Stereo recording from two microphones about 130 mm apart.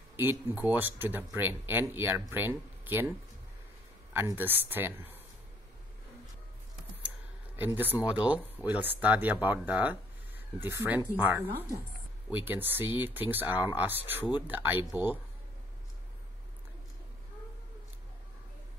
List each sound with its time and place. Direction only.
0.1 s speech: 15° right (ahead or behind)
7.5 s speech: 15° right (ahead or behind)